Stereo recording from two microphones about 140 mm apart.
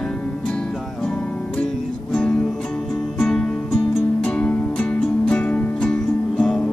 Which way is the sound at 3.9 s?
5° left (ahead or behind).